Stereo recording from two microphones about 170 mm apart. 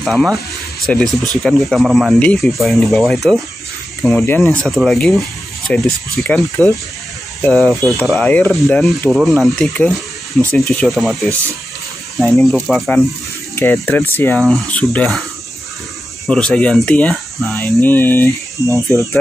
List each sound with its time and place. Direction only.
0.0 s speech: centre (ahead or behind)
12.2 s speech: 5° left (ahead or behind)
16.3 s speech: 5° left (ahead or behind)
17.8 s speech: 10° left (ahead or behind)
18.6 s speech: 20° right (ahead or behind)